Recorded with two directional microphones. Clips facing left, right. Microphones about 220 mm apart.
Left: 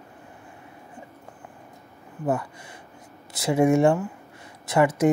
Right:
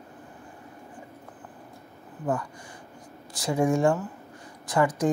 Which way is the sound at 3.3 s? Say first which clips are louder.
Left 4 dB; 25° left (ahead or behind).